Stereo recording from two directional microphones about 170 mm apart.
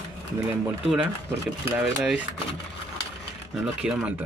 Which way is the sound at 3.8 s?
5° right (ahead or behind).